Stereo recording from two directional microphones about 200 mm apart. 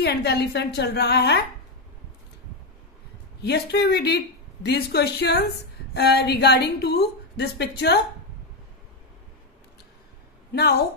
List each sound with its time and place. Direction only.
0.0 s a woman's voice: 55° left (ahead or behind)
3.4 s a woman's voice: 55° left (ahead or behind)
10.5 s a woman's voice: 50° left (ahead or behind)